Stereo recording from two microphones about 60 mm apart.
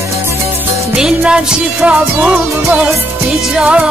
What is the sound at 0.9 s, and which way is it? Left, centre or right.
Music, centre.